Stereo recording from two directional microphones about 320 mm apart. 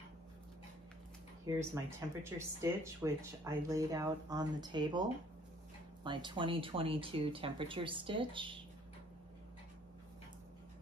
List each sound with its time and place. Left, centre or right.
1.4 s speech: centre
6.0 s speech: centre